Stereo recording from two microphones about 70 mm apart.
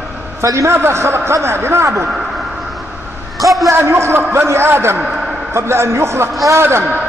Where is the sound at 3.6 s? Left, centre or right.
Right.